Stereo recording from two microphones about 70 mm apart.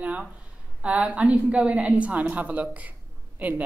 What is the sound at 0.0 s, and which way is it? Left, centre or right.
Speech, centre.